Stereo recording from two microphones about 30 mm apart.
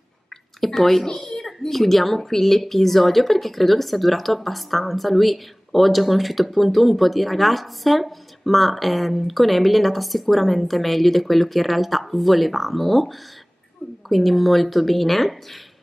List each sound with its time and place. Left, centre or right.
0.6 s speech: centre
1.3 s a sound: centre
1.7 s a woman's voice: centre